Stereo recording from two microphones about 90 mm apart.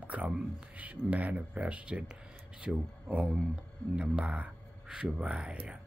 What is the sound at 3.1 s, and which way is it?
Speech, 15° right (ahead or behind).